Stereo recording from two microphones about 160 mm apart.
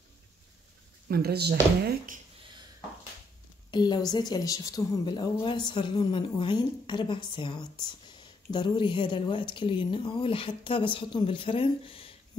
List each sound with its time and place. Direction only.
1.0 s speech: 75° right (ahead or behind)
3.7 s a woman's voice: 25° left (ahead or behind)